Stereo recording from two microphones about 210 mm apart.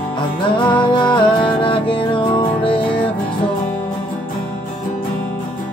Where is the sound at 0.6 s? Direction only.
20° left (ahead or behind).